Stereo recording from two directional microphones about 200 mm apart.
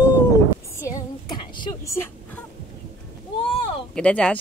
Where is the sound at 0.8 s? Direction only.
20° left (ahead or behind).